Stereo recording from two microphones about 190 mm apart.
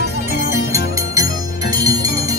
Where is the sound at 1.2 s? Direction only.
20° right (ahead or behind).